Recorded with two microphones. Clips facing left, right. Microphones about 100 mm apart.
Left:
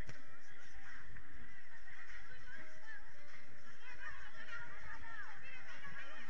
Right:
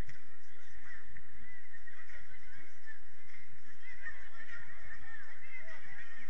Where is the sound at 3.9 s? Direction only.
65° left (ahead or behind).